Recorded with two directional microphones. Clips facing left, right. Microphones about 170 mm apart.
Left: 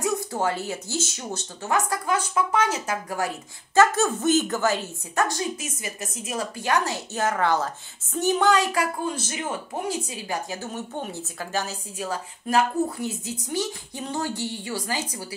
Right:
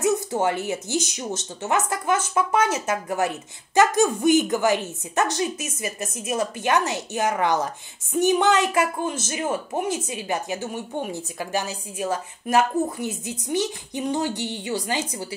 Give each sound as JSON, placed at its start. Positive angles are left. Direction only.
{"t": 0.0, "sound": "a woman's voice", "side_deg": -20}